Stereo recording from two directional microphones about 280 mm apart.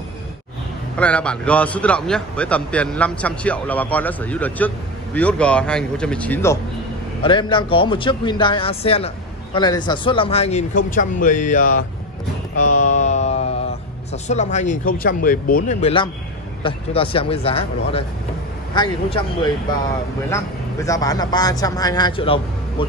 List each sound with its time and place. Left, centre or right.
0.9 s a man's voice: centre; by 11.8 s left
12.5 s a sound: left
14.1 s speech: left
20.2 s speech: centre